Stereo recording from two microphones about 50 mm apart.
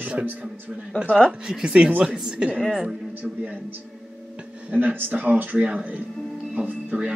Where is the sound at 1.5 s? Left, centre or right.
Centre.